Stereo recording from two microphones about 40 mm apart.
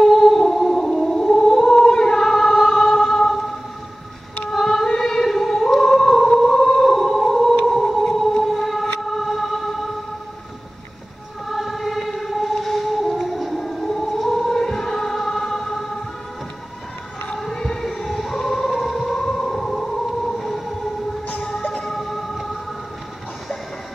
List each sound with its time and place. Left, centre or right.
0.1 s music: centre
0.7 s a sound: centre
1.9 s music: centre
4.5 s singing: centre
7.6 s music: centre
9.0 s vehicle: centre
11.4 s choir: centre
13.7 s siren: centre
14.5 s music: centre
17.4 s a sound: centre
20.3 s train: centre
21.5 s music: left
21.9 s music: centre